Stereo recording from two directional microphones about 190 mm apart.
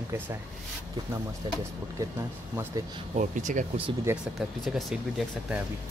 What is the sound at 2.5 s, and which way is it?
Speech, 10° right (ahead or behind).